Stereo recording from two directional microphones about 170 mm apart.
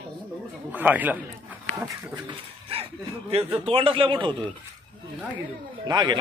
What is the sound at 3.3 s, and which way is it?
Speech, 35° right (ahead or behind).